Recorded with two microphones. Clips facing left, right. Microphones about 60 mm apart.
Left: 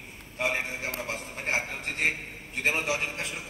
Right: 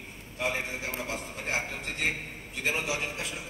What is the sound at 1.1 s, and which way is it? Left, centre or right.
A man's voice, left.